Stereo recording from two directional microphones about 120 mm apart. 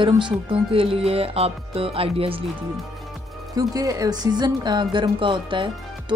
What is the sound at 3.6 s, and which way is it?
Speech, 30° right (ahead or behind).